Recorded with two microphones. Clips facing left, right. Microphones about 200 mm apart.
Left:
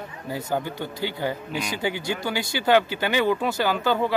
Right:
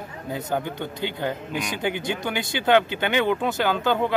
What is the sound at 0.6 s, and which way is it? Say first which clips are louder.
Speech: even; 20° right (ahead or behind).